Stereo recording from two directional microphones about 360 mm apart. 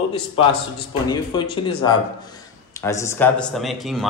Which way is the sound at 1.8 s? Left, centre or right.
Centre.